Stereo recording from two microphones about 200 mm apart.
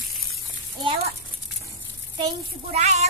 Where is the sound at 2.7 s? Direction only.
35° right (ahead or behind).